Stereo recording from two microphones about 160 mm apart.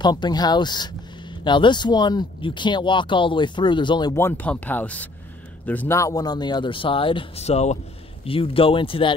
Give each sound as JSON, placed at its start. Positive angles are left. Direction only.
{"t": 0.0, "sound": "speech", "side_deg": 25}
{"t": 4.1, "sound": "speech", "side_deg": 15}